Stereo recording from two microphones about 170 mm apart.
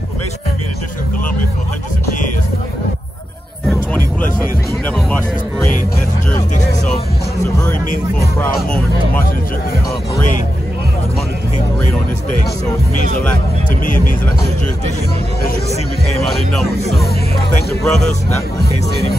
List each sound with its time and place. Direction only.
3.6 s speech: 10° left (ahead or behind)
8.5 s speech: 5° left (ahead or behind)
13.7 s speech: 50° left (ahead or behind)
17.8 s speech: centre (ahead or behind)